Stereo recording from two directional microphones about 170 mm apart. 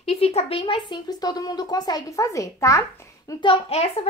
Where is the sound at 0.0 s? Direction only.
35° left (ahead or behind); by 2.8 s 20° left (ahead or behind).